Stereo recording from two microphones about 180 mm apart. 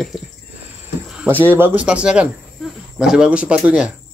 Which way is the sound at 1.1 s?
10° right (ahead or behind).